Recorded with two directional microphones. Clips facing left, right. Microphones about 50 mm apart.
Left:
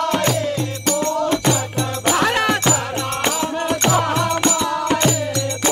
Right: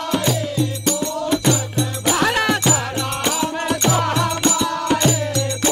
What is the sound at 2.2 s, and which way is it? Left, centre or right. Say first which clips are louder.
Music: right 1 dB; left.